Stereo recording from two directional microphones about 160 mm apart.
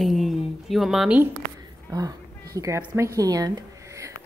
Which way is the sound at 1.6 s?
20° right (ahead or behind).